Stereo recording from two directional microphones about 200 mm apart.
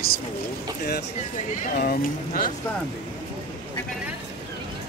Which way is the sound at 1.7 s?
50° left (ahead or behind).